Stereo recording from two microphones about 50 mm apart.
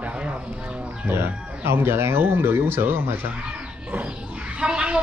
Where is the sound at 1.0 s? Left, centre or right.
Right.